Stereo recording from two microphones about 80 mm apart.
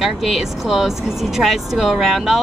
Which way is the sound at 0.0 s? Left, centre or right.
Centre.